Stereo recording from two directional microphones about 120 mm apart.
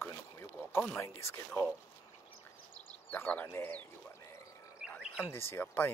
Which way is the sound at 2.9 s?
15° left (ahead or behind).